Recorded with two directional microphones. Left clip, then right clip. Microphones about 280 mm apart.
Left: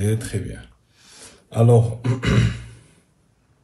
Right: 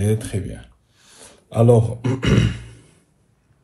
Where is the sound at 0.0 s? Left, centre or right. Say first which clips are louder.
Right 2 dB; right.